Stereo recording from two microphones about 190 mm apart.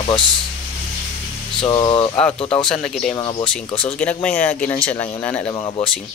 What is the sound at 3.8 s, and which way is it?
Speech, 5° left (ahead or behind).